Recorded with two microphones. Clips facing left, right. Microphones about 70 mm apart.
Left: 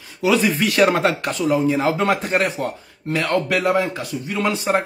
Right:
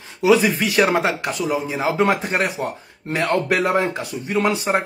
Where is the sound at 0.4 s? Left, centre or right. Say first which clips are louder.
Left 1 dB; centre.